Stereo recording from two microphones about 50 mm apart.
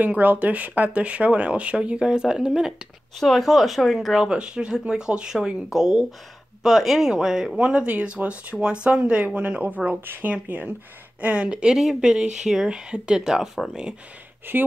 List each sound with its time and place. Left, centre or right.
0.2 s speech: right; by 2.7 s centre
3.2 s speech: centre
4.2 s speech: centre
13.2 s speech: centre
14.5 s speech: right